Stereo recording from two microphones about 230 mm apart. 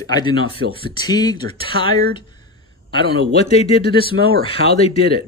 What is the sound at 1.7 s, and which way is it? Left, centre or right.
Speech, right.